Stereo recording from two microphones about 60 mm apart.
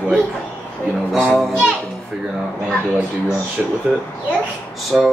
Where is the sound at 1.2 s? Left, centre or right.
Centre.